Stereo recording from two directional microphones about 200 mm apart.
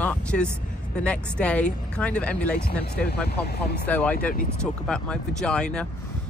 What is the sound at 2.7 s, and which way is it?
Speech, 50° left (ahead or behind).